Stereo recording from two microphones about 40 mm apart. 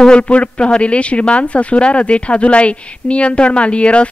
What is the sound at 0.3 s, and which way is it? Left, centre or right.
Speech, left.